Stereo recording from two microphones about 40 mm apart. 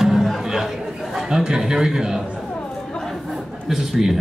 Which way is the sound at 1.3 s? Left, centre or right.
Centre.